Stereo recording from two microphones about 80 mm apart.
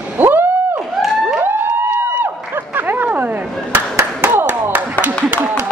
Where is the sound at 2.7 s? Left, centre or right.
Right.